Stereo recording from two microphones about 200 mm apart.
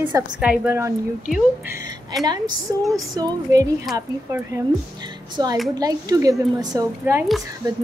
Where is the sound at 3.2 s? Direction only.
15° right (ahead or behind).